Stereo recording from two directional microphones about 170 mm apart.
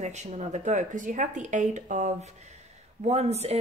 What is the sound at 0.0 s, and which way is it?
Speech, 40° right (ahead or behind).